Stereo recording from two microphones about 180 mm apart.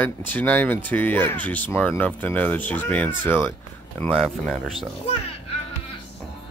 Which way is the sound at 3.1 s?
25° right (ahead or behind).